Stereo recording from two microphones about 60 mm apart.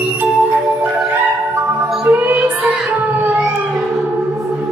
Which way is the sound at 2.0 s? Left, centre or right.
Right.